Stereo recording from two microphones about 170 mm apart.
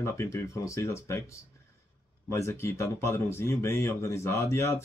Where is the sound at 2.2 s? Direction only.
15° left (ahead or behind).